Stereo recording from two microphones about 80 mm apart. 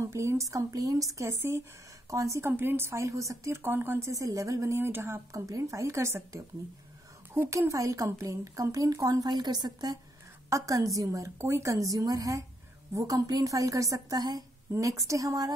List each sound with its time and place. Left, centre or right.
0.0 s a woman's voice: right
4.1 s a woman's voice: right
7.4 s speech: right
10.5 s speech: right
14.7 s speech: right